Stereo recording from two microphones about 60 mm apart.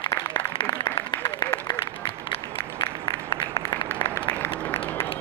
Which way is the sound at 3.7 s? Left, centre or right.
Left.